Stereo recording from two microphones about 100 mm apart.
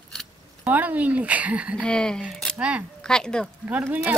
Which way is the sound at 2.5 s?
10° right (ahead or behind).